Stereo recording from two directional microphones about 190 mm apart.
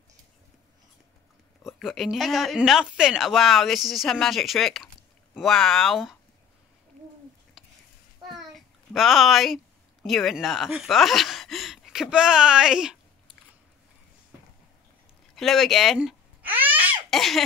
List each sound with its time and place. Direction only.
1.8 s speech: centre (ahead or behind)
8.3 s a sound: centre (ahead or behind)
10.0 s speech: centre (ahead or behind)
15.3 s babbling: centre (ahead or behind)
16.8 s laughter: centre (ahead or behind)